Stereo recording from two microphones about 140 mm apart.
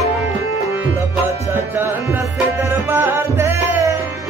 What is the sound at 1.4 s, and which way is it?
Music, 20° right (ahead or behind).